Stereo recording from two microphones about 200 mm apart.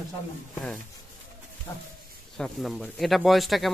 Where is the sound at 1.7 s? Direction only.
15° left (ahead or behind).